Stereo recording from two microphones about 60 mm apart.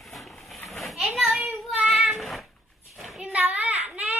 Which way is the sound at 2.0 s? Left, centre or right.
Centre.